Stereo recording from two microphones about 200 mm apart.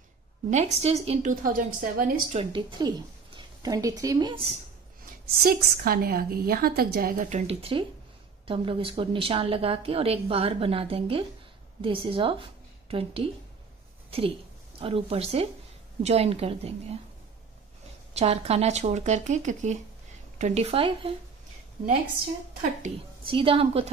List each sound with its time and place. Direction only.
0.5 s speech: 35° right (ahead or behind)
1.3 s a woman's voice: 45° right (ahead or behind)
2.3 s a woman's voice: 25° right (ahead or behind)
5.4 s a woman's voice: 50° right (ahead or behind); by 13.3 s 30° right (ahead or behind)
14.8 s a woman's voice: 30° right (ahead or behind)
18.1 s a woman's voice: 30° right (ahead or behind)
22.8 s a woman's voice: 25° right (ahead or behind)